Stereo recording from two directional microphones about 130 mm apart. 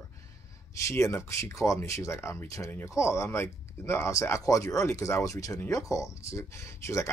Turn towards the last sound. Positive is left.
turn(degrees=20)  # may be behind; listen again after turning